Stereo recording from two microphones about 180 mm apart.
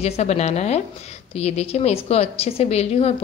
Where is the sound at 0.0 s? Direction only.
35° left (ahead or behind).